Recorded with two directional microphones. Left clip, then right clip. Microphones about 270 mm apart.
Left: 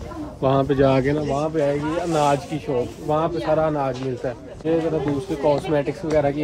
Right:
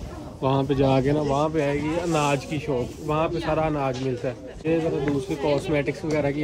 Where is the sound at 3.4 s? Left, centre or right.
Centre.